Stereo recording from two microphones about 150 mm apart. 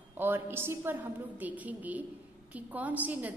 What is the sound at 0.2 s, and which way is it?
A woman's voice, 15° right (ahead or behind).